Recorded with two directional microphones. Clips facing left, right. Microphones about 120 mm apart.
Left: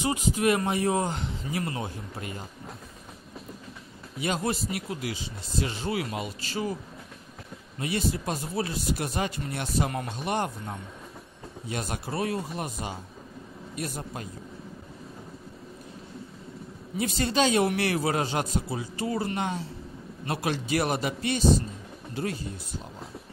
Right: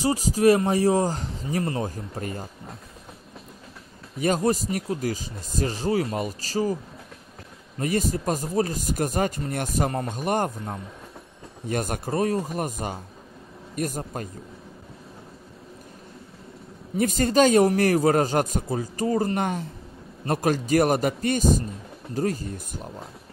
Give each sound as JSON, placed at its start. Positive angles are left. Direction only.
{"t": 0.0, "sound": "speech", "side_deg": -35}
{"t": 4.2, "sound": "speech", "side_deg": -40}
{"t": 7.8, "sound": "a man's voice", "side_deg": -45}
{"t": 11.6, "sound": "a man's voice", "side_deg": -50}
{"t": 16.9, "sound": "a man's voice", "side_deg": -45}